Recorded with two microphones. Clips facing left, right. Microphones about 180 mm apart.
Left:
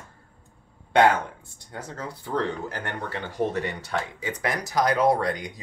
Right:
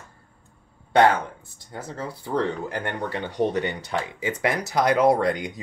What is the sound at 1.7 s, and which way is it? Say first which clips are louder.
Speech: right 2 dB; 10° right (ahead or behind).